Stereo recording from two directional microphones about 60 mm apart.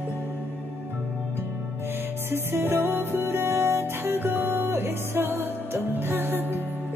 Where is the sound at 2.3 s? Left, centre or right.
Right.